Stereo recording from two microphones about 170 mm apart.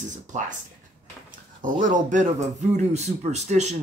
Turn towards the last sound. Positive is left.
turn(degrees=-40)  # may be behind; listen again after turning